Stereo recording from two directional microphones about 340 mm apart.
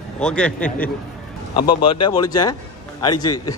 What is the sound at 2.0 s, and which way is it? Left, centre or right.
Speech, centre.